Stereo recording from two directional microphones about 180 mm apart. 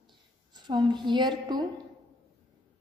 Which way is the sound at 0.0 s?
25° right (ahead or behind).